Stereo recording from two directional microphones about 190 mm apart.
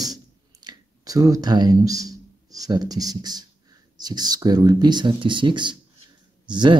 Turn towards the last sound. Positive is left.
turn(degrees=-25)  # may be behind; listen again after turning